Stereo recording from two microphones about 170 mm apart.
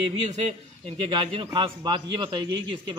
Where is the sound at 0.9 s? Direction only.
30° right (ahead or behind).